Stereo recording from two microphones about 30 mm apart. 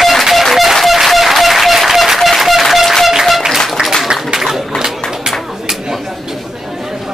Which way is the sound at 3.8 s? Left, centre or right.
Right.